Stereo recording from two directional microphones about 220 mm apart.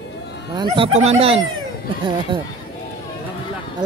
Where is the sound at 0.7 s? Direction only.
25° right (ahead or behind).